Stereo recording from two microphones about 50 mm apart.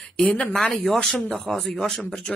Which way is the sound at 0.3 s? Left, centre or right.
Centre.